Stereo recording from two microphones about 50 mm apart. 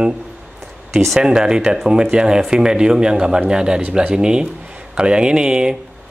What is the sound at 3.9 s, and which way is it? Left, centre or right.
Speech, right.